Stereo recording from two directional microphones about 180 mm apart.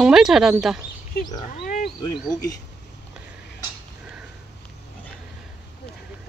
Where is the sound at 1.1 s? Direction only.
55° left (ahead or behind).